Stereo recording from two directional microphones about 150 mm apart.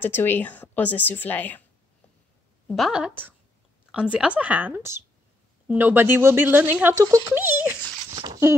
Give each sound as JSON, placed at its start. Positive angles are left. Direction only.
{"t": 0.0, "sound": "speech", "side_deg": 15}
{"t": 2.7, "sound": "speech", "side_deg": -5}